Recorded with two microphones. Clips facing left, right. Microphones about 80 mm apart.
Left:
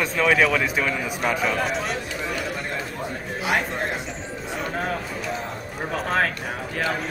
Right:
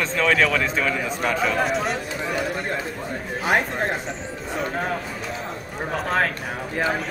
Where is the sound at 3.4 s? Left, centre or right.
Right.